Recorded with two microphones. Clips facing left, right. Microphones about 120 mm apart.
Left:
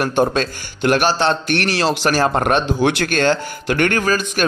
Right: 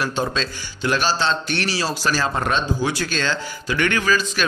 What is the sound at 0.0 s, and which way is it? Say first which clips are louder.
A man's voice: left 6 dB; 50° left (ahead or behind).